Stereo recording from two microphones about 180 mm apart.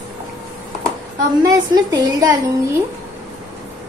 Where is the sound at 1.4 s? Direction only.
20° right (ahead or behind).